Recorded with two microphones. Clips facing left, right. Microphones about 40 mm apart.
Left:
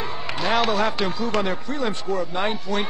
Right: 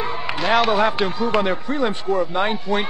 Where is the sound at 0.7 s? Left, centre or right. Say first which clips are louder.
Right 4 dB; centre.